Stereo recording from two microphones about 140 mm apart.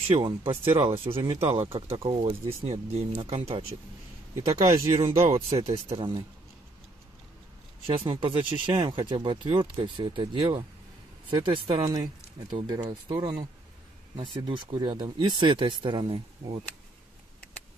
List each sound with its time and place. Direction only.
0.1 s speech: 40° right (ahead or behind)
2.7 s speech: 50° right (ahead or behind)
4.5 s speech: 20° right (ahead or behind)
5.9 s speech: 35° right (ahead or behind)
7.8 s speech: 40° right (ahead or behind)